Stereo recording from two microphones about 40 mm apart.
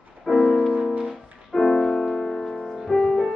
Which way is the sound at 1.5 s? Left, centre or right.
Centre.